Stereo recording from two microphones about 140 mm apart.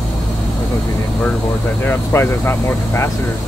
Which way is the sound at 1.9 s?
15° left (ahead or behind).